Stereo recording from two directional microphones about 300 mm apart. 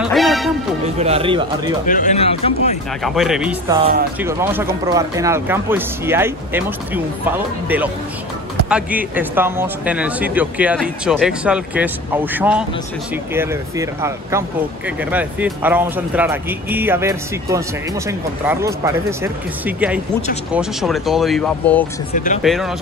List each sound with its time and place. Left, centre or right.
0.0 s music: centre
0.8 s speech: right
1.9 s speech: left
3.0 s speech: centre
22.1 s speech: left
22.4 s speech: centre